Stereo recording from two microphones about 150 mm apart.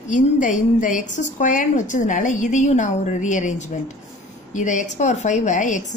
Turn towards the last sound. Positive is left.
turn(degrees=55)  # may be behind; listen again after turning